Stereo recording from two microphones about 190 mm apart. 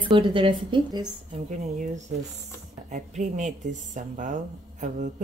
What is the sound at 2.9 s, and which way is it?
Speech, 40° right (ahead or behind).